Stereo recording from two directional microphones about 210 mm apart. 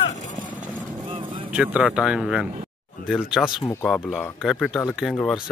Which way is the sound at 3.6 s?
5° left (ahead or behind).